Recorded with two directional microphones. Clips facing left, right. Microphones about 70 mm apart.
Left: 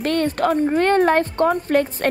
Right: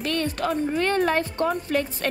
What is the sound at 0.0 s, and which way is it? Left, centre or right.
A woman's voice, left.